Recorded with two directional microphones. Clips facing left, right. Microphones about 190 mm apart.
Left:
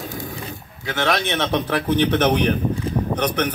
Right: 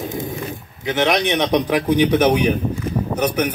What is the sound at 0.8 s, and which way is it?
A man's voice, 20° right (ahead or behind).